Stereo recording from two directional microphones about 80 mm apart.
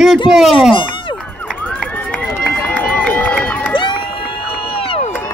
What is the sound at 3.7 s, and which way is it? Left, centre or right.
Crowd, left.